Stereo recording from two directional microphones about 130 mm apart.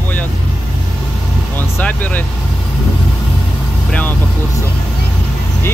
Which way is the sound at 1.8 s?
10° left (ahead or behind).